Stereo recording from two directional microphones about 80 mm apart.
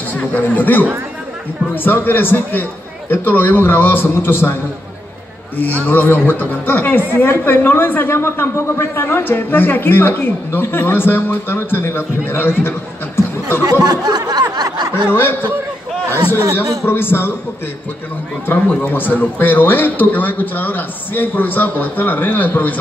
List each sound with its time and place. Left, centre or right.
0.1 s speech: left
5.6 s speech: left
13.7 s a sound: right
15.0 s speech: left
16.8 s speech: left
18.7 s speech: left